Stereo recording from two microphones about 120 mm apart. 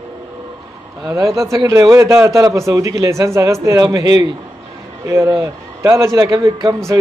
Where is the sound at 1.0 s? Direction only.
25° right (ahead or behind).